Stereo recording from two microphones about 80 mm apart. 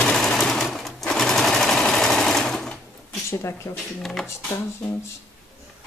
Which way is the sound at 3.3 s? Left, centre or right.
Left.